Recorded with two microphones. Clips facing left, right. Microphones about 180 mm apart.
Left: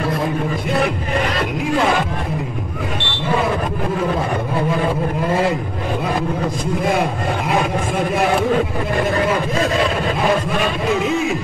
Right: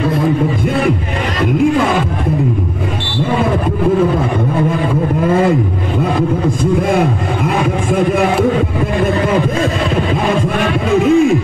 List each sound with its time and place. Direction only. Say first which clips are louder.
11.0 s music: right 9 dB; 50° right (ahead or behind)